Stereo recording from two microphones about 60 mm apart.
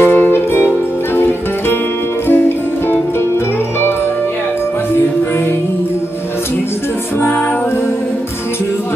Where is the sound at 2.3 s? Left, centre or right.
Left.